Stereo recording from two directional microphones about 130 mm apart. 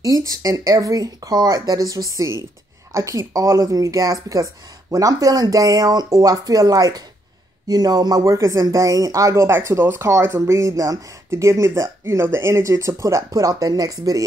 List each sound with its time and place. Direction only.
0.0 s speech: 25° right (ahead or behind)